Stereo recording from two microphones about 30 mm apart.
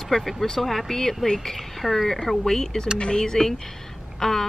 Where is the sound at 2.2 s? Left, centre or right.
Centre.